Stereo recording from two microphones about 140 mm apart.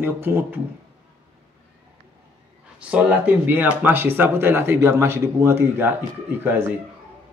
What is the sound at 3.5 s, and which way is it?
Speech, 15° right (ahead or behind).